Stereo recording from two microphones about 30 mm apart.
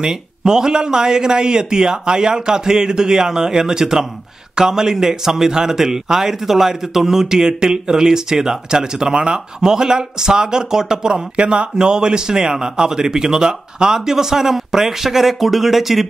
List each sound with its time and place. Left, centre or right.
0.0 s a man's voice: right
11.3 s a man's voice: right; by 16.1 s centre